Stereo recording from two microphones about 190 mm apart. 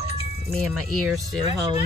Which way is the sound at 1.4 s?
25° right (ahead or behind).